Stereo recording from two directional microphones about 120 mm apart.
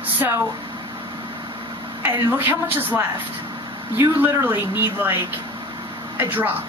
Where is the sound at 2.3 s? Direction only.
15° right (ahead or behind).